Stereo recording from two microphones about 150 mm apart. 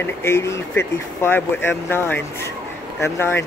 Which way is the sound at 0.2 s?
20° left (ahead or behind).